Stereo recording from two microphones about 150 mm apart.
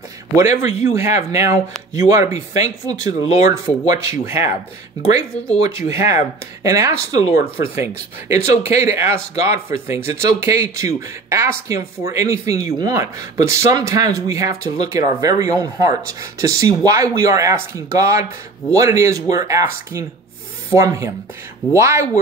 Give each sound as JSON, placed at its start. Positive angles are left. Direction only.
{"t": 0.6, "sound": "speech", "side_deg": -20}
{"t": 5.9, "sound": "speech", "side_deg": -20}